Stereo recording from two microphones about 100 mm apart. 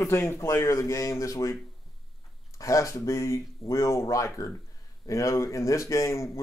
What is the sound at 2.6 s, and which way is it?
Speech, 30° left (ahead or behind).